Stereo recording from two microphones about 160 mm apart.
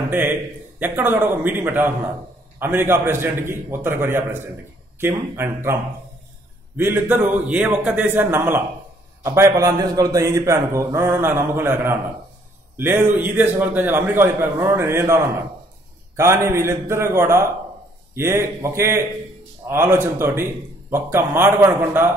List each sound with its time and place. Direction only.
0.1 s a man's voice: 10° right (ahead or behind)
6.8 s a man's voice: 15° right (ahead or behind)